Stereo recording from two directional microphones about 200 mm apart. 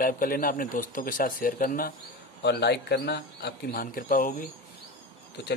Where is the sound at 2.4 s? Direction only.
55° left (ahead or behind).